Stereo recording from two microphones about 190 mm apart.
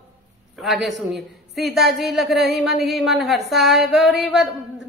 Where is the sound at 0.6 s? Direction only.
Centre (ahead or behind).